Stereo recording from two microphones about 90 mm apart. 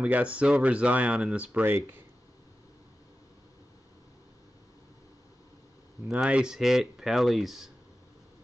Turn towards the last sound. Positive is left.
turn(degrees=0)  # may be behind; listen again after turning